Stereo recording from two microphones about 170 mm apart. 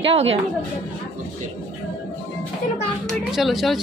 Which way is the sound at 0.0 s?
35° right (ahead or behind).